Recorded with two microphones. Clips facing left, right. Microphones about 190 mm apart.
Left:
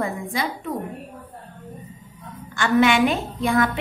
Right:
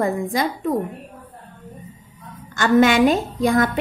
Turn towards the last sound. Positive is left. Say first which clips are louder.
# right 3 dB
turn(degrees=-40)  # may be behind; listen again after turning